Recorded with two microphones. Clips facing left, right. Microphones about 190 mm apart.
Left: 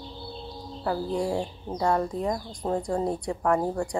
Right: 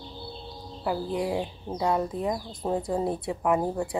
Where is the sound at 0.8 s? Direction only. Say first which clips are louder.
Left 1 dB; 10° right (ahead or behind).